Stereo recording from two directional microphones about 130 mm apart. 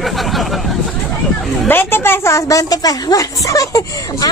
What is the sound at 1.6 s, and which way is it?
A woman's voice, 15° left (ahead or behind).